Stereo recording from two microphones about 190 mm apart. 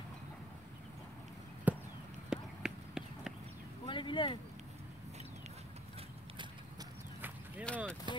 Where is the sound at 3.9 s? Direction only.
25° left (ahead or behind).